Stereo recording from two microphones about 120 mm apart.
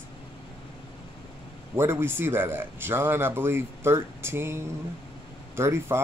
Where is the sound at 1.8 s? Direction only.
20° right (ahead or behind).